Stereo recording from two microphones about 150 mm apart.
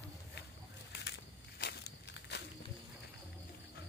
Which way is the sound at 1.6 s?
90° left.